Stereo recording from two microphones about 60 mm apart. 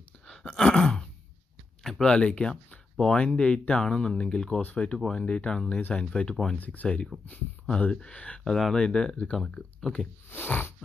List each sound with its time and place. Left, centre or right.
0.3 s groan: centre
1.8 s a sound: centre
2.0 s speech: centre
6.5 s speech: left; by 10.0 s centre
10.3 s sniff: left